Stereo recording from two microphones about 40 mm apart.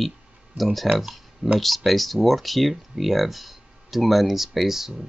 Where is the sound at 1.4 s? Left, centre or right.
Right.